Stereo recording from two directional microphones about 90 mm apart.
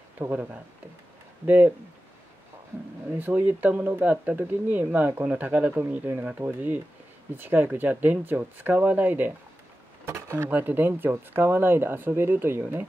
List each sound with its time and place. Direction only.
0.3 s speech: 15° right (ahead or behind)
3.1 s speech: 20° right (ahead or behind)